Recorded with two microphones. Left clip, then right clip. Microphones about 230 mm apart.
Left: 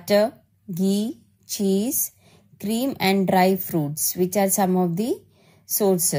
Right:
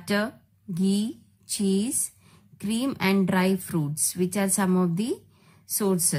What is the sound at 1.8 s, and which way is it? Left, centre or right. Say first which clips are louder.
A woman's voice: left 4 dB; centre.